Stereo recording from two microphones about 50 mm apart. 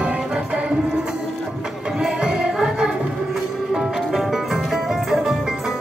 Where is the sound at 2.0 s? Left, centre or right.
Centre.